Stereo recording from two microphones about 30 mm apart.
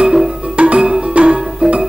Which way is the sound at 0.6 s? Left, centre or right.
Right.